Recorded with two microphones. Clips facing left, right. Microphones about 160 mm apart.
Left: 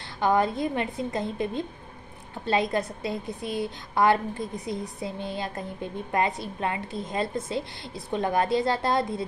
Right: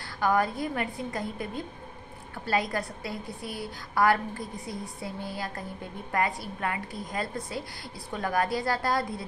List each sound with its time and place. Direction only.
0.2 s a woman's voice: 25° left (ahead or behind)